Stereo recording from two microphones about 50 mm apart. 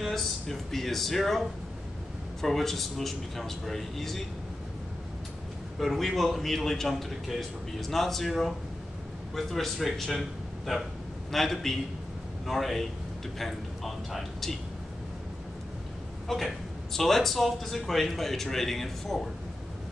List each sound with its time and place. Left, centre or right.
0.0 s speech: centre
5.8 s a man's voice: centre
16.3 s speech: centre